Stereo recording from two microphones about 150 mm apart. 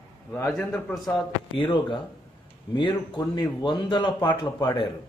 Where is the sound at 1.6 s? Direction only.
35° left (ahead or behind).